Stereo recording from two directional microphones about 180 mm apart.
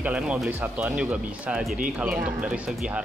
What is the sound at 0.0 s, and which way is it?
Speech, 5° right (ahead or behind).